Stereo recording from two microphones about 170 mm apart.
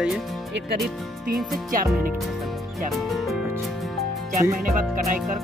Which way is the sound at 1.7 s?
55° right (ahead or behind).